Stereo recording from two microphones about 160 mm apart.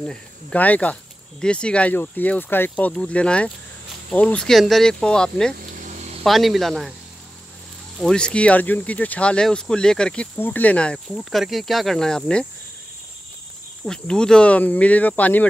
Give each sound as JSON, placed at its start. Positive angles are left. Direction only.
{"t": 0.0, "sound": "speech", "side_deg": 5}
{"t": 5.6, "sound": "a sound", "side_deg": -55}
{"t": 6.2, "sound": "speech", "side_deg": 0}
{"t": 8.0, "sound": "speech", "side_deg": 5}
{"t": 13.8, "sound": "speech", "side_deg": 5}